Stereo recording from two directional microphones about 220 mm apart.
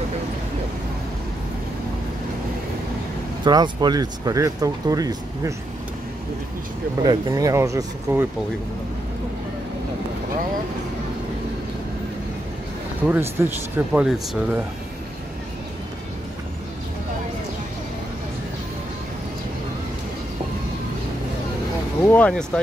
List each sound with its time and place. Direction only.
3.4 s speech: 20° right (ahead or behind)
7.0 s speech: 20° right (ahead or behind)
13.1 s speech: 10° right (ahead or behind)
22.0 s speech: 5° left (ahead or behind)